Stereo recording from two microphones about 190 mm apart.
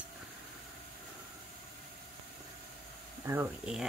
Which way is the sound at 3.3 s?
15° right (ahead or behind).